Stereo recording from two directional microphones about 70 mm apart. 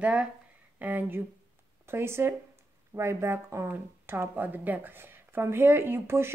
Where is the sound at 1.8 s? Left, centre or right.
Right.